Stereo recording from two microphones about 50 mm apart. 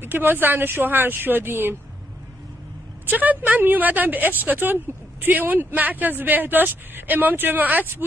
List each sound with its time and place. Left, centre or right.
0.0 s speech: right
3.1 s speech: right